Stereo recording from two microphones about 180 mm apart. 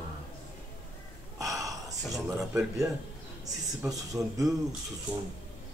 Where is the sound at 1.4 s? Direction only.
20° right (ahead or behind).